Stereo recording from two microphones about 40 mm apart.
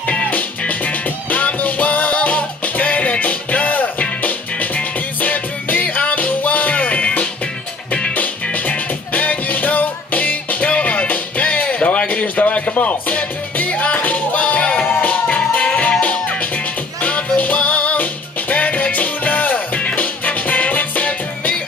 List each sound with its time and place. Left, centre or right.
1.3 s music: left
12.1 s a sound: left
12.7 s music: left
14.9 s music: left
15.2 s music: left